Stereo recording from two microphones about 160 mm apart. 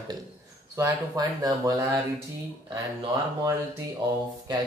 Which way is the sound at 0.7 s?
20° right (ahead or behind).